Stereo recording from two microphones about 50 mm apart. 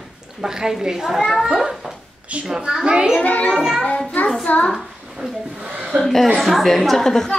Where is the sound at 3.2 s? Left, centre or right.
Left.